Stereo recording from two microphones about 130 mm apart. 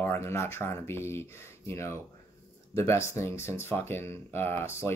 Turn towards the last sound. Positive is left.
turn(degrees=20)  # may be behind; listen again after turning